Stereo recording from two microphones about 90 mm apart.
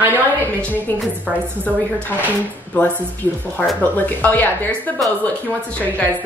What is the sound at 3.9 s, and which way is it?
Speech, 20° left (ahead or behind).